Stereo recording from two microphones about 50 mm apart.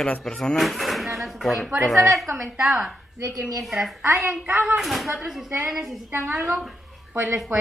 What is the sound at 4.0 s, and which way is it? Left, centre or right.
Speech, right.